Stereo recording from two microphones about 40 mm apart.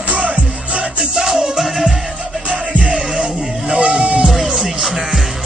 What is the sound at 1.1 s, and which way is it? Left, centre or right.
Music, centre.